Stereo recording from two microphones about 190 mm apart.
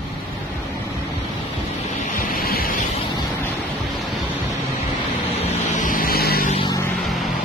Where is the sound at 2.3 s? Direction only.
50° left (ahead or behind).